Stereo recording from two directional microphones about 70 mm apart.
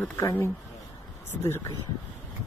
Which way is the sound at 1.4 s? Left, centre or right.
Left.